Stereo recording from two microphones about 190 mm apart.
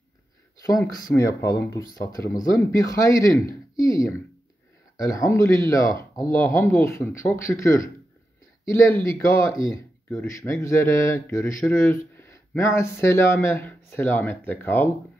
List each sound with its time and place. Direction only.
0.6 s speech: 20° left (ahead or behind)